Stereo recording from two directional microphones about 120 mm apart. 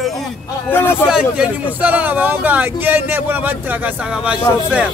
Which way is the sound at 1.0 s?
5° right (ahead or behind).